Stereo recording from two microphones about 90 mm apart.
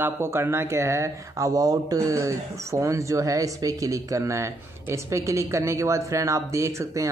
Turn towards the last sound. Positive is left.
turn(degrees=-35)  # may be behind; listen again after turning